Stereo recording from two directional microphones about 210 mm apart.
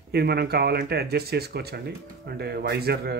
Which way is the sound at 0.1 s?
50° right (ahead or behind).